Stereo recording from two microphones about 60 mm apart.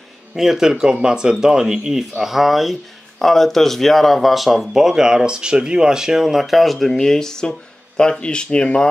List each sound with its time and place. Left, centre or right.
0.4 s speech: centre